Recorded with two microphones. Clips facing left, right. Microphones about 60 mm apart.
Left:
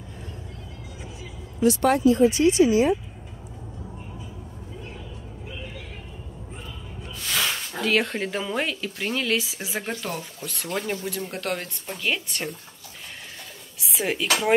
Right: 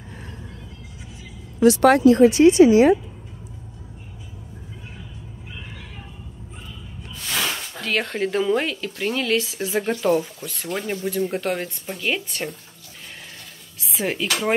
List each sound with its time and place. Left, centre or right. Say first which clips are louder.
1.6 s speech: right 5 dB; right
7.2 s speech: right 1 dB; centre
13.7 s speech: right 1 dB; centre